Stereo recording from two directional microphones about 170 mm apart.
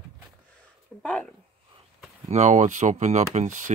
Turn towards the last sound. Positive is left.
turn(degrees=-50)  # may be behind; listen again after turning